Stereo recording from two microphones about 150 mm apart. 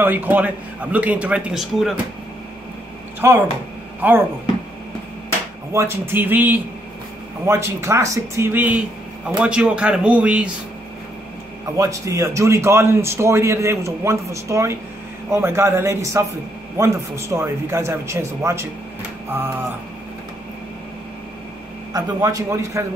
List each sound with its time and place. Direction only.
0.0 s speech: 10° right (ahead or behind)
3.2 s speech: 15° right (ahead or behind)
5.7 s speech: 20° right (ahead or behind)
11.7 s speech: 20° right (ahead or behind)
21.9 s speech: 20° right (ahead or behind)